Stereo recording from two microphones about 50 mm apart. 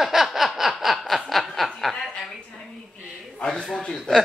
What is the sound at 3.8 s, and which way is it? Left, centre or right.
Speech, centre.